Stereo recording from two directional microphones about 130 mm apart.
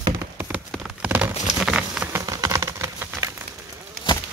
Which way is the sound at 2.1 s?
25° right (ahead or behind).